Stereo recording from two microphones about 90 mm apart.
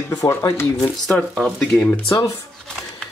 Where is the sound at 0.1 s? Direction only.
30° left (ahead or behind).